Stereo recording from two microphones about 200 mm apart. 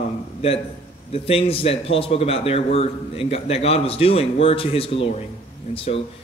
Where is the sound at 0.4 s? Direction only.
30° left (ahead or behind).